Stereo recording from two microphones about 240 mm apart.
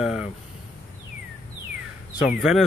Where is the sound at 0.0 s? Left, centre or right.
Centre.